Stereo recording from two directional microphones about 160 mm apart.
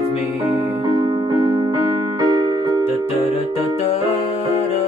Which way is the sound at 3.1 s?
35° left (ahead or behind).